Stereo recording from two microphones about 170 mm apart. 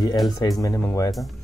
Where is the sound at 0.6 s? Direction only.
20° left (ahead or behind).